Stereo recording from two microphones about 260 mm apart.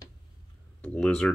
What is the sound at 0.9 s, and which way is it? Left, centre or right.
Speech, centre.